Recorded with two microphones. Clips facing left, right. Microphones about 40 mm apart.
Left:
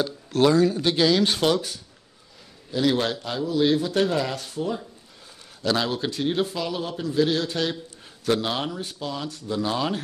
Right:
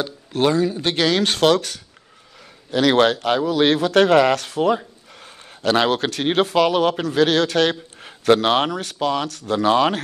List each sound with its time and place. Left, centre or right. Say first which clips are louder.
0.0 s speech: right 1 dB; right
0.8 s speech: right 1 dB; right
5.2 s a sound: right 6 dB; right
5.9 s speech: right 5 dB; right